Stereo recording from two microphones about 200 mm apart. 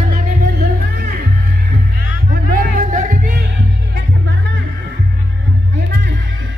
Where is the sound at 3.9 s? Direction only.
65° right (ahead or behind).